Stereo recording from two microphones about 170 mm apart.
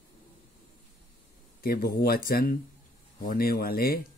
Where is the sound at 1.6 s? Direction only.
60° left (ahead or behind).